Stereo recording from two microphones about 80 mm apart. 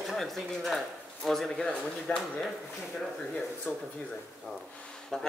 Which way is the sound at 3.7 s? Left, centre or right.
Centre.